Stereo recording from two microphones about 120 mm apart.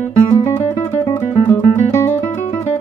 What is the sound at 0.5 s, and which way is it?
Music, 20° left (ahead or behind).